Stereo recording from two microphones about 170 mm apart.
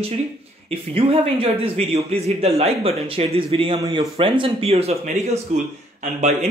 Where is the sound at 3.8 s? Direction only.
20° right (ahead or behind).